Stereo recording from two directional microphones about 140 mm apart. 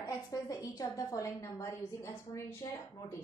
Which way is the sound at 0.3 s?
25° left (ahead or behind).